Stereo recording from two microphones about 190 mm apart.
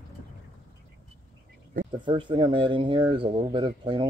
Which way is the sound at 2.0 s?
25° right (ahead or behind).